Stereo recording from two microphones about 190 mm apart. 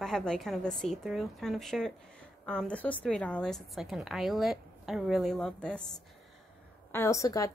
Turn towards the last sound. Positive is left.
turn(degrees=15)  # may be behind; listen again after turning